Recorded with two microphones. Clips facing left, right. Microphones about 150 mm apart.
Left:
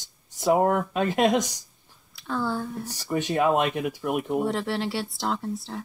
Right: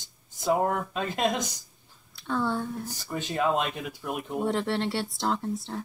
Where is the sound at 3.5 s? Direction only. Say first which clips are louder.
Left 5 dB; 60° left (ahead or behind).